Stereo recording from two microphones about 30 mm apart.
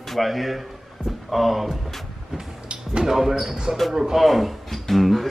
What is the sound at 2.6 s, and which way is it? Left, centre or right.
Music, right.